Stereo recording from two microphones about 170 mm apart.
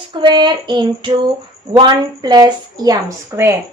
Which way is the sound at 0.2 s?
25° right (ahead or behind).